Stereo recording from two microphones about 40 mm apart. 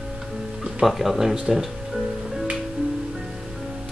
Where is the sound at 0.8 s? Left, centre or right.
Centre.